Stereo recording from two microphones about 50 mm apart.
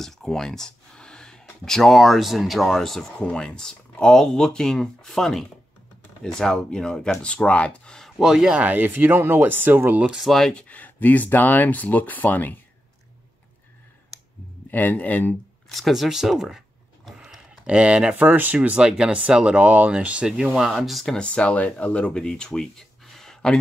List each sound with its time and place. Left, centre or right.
0.0 s a sound: centre
1.6 s speech: centre
8.2 s speech: centre
8.5 s speech: right
10.2 s speech: centre
10.5 s speech: left
14.7 s speech: left
15.7 s a sound: centre
17.6 s speech: right
18.8 s speech: centre
20.5 s speech: centre
21.2 s speech: left; by 23.5 s centre